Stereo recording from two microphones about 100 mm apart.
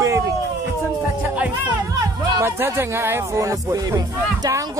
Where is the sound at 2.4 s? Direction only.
25° right (ahead or behind).